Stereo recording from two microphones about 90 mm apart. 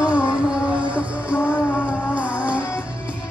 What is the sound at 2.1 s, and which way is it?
Music, 15° right (ahead or behind).